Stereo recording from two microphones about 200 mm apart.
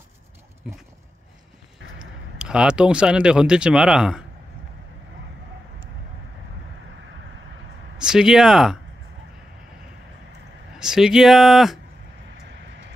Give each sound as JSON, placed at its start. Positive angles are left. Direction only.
{"t": 0.7, "sound": "speech", "side_deg": -5}
{"t": 2.0, "sound": "speech", "side_deg": -5}
{"t": 8.0, "sound": "speech", "side_deg": -5}
{"t": 10.8, "sound": "speech", "side_deg": -5}